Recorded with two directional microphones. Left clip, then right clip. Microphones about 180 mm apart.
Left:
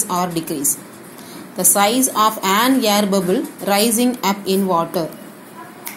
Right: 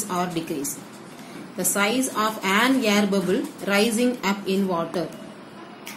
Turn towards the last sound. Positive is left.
turn(degrees=15)  # may be behind; listen again after turning